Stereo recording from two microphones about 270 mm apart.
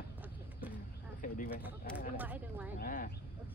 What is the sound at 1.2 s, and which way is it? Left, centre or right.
Speech, left.